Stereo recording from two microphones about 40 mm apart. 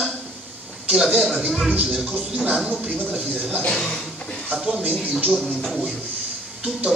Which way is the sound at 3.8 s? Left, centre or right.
Centre.